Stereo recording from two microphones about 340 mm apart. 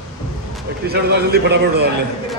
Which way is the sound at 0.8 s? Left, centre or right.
Right.